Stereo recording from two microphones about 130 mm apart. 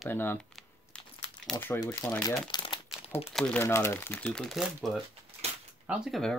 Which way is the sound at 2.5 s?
35° left (ahead or behind).